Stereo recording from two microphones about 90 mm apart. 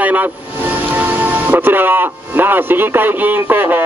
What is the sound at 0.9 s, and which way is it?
Speech, 20° right (ahead or behind).